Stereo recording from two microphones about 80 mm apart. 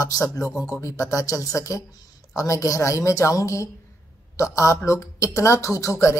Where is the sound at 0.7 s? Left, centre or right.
Left.